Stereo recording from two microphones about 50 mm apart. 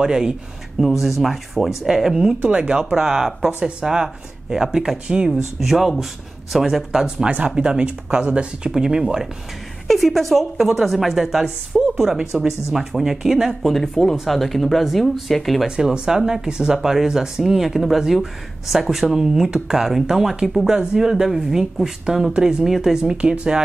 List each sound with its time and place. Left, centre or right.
0.0 s speech: centre
0.7 s a woman's voice: centre
2.4 s speech: right
5.3 s a woman's voice: centre
7.2 s speech: right
9.8 s a woman's voice: centre
15.6 s speech: centre
22.9 s speech: centre